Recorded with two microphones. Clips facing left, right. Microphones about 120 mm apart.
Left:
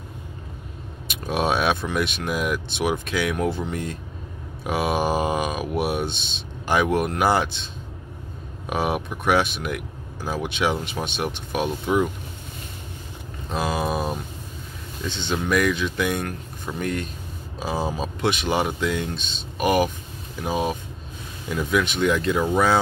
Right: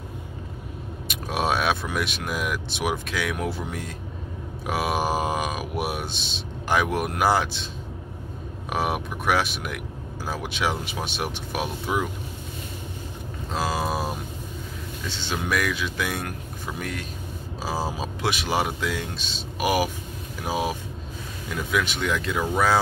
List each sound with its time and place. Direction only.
1.0 s speech: centre (ahead or behind)
8.6 s speech: centre (ahead or behind)
13.5 s speech: centre (ahead or behind)